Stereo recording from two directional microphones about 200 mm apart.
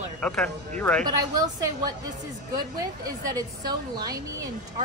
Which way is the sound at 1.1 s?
15° right (ahead or behind).